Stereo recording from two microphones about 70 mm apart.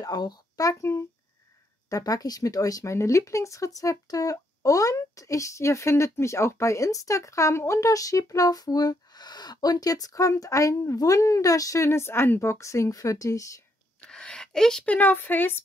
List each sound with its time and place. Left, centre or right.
0.0 s speech: left
0.7 s speech: left
14.0 s a sound: centre
14.9 s speech: left